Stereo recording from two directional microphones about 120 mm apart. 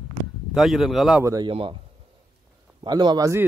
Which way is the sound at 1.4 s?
45° right (ahead or behind).